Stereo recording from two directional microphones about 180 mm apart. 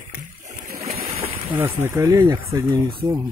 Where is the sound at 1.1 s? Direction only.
30° right (ahead or behind).